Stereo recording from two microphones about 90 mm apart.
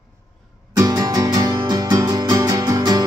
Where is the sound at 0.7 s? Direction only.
45° right (ahead or behind).